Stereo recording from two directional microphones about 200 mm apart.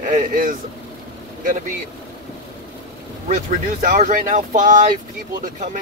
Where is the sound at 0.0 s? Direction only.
40° right (ahead or behind).